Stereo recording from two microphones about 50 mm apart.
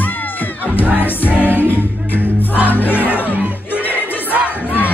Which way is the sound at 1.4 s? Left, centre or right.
Left.